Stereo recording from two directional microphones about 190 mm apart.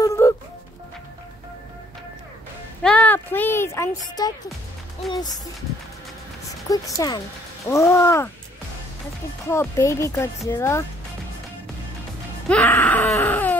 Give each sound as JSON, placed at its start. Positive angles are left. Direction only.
{"t": 0.0, "sound": "music", "side_deg": 15}
{"t": 2.8, "sound": "a sound", "side_deg": 5}
{"t": 5.1, "sound": "speech", "side_deg": 20}
{"t": 6.7, "sound": "speech", "side_deg": 20}
{"t": 9.5, "sound": "speech", "side_deg": 15}
{"t": 12.4, "sound": "music", "side_deg": 5}
{"t": 13.2, "sound": "a sound", "side_deg": 10}